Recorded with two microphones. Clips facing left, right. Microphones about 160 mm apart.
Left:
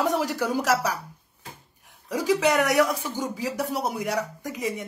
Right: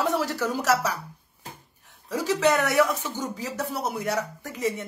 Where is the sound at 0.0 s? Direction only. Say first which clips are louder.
Left 1 dB; 15° left (ahead or behind).